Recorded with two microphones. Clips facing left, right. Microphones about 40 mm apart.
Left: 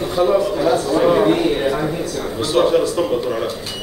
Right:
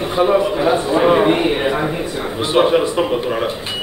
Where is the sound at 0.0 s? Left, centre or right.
Right.